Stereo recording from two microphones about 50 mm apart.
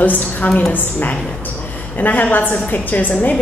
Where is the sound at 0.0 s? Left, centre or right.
Left.